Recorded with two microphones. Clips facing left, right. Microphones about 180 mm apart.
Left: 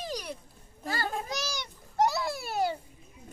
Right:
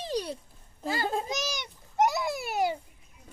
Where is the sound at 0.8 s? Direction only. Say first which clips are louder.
Right 3 dB; 20° right (ahead or behind).